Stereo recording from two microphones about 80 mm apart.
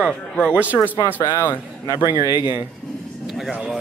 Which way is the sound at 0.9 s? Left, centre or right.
Left.